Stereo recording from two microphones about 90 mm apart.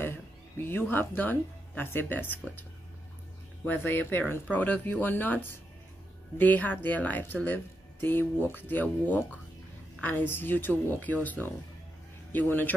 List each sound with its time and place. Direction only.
0.0 s speech: 25° left (ahead or behind)
3.6 s speech: 20° left (ahead or behind)